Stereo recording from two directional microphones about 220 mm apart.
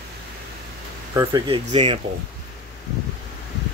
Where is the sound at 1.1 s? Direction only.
15° right (ahead or behind).